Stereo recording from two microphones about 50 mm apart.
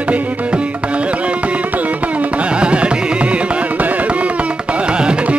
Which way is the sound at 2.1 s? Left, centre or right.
Right.